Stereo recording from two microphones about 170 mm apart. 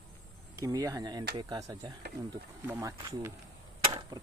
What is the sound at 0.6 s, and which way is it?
Speech, 20° right (ahead or behind).